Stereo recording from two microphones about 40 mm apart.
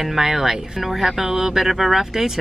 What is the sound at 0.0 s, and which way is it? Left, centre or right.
Speech, centre.